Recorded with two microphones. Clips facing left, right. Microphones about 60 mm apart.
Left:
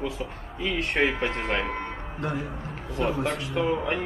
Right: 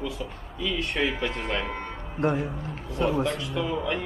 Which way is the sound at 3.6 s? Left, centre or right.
Left.